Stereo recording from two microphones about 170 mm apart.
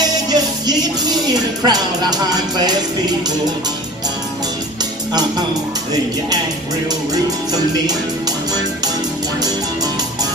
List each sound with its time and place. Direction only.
0.3 s music: 25° right (ahead or behind)